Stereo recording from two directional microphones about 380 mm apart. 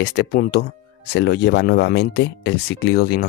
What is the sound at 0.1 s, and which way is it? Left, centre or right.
Speech, left.